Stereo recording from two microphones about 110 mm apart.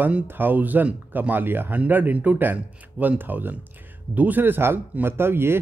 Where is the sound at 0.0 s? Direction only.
15° right (ahead or behind).